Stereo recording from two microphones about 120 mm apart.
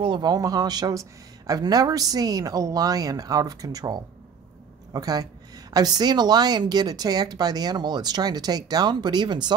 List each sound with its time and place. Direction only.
0.0 s a woman's voice: 40° right (ahead or behind)